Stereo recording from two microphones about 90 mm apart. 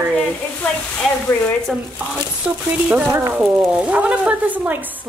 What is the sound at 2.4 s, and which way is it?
Speech, 15° right (ahead or behind).